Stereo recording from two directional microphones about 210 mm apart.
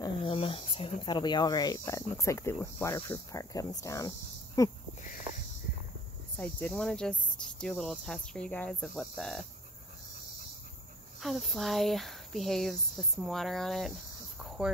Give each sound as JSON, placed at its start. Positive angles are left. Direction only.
{"t": 0.0, "sound": "speech", "side_deg": 25}
{"t": 6.3, "sound": "cricket", "side_deg": 5}
{"t": 11.1, "sound": "cricket", "side_deg": 0}